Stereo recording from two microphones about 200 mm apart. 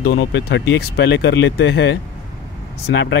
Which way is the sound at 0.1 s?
65° left (ahead or behind).